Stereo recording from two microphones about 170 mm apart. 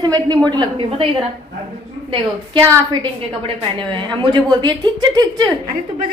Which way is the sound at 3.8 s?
30° right (ahead or behind).